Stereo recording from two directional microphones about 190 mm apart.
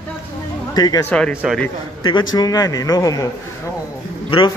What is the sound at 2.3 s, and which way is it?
Speech, 20° left (ahead or behind).